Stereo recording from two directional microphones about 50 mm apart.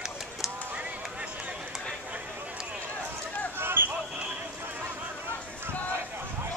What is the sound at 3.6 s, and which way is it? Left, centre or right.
Basketball bounce, right.